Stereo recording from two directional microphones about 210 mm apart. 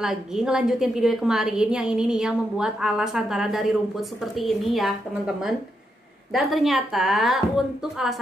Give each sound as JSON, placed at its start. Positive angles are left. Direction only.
{"t": 0.0, "sound": "a woman's voice", "side_deg": -5}